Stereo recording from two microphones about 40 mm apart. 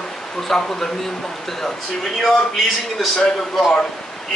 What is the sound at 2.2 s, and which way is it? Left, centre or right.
Speech, centre.